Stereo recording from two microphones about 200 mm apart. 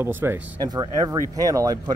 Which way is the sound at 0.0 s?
10° right (ahead or behind).